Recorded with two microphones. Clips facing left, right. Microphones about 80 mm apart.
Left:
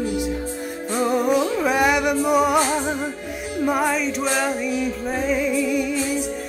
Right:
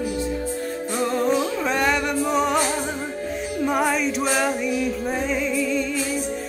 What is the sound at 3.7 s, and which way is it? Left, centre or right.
Music, centre.